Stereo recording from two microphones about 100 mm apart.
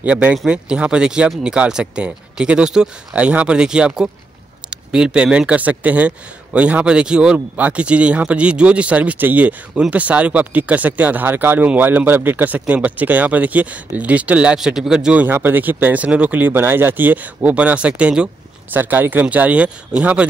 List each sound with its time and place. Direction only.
0.0 s speech: 15° right (ahead or behind)
15.2 s speech: 20° right (ahead or behind)